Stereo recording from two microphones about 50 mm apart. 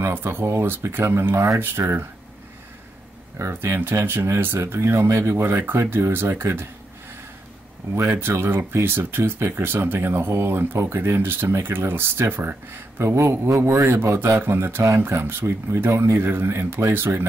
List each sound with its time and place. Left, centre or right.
0.2 s speech: right
1.6 s speech: right
3.5 s speech: right
5.3 s speech: right
6.3 s speech: right
8.2 s speech: right
13.0 s speech: right
14.4 s speech: right
16.9 s speech: right